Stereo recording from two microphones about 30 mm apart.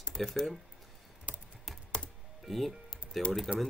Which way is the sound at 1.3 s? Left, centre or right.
Right.